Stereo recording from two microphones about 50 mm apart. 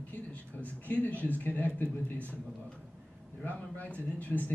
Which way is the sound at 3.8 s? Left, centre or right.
Left.